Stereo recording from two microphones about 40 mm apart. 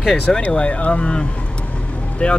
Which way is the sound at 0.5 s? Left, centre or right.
Left.